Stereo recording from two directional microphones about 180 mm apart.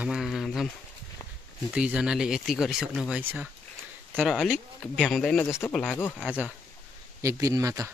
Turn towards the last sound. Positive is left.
turn(degrees=-15)  # may be behind; listen again after turning